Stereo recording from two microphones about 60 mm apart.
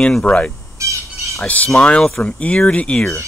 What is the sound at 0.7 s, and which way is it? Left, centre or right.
Bird, right.